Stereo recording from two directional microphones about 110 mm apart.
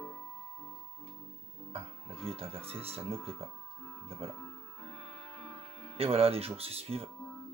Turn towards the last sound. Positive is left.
turn(degrees=-65)  # may be behind; listen again after turning